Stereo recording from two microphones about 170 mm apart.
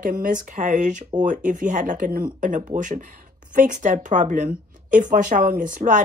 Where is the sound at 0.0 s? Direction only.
50° right (ahead or behind).